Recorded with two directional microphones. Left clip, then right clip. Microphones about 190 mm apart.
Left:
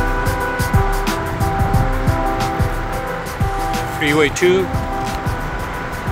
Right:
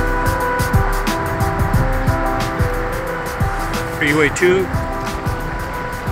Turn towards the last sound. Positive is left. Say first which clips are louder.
# even
turn(degrees=20)  # may be behind; listen again after turning